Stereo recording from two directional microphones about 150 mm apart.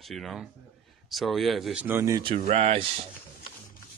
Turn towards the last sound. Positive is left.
turn(degrees=-40)  # may be behind; listen again after turning